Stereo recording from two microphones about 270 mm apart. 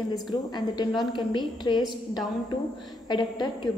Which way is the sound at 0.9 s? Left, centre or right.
Centre.